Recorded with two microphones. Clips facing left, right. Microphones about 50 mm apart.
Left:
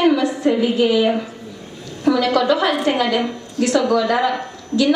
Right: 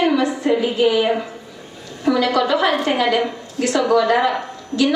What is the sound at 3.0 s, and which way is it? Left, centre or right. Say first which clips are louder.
A woman's voice: right 1 dB; centre.